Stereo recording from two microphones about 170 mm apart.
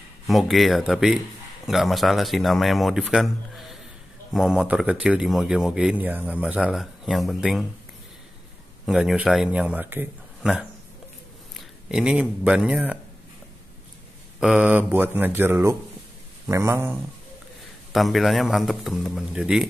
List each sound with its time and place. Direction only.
0.3 s a man's voice: centre (ahead or behind)
8.8 s a man's voice: 5° right (ahead or behind)
14.4 s speech: 5° right (ahead or behind)
17.9 s a man's voice: centre (ahead or behind)